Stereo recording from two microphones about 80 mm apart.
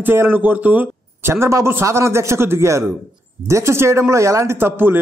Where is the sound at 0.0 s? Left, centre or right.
Right.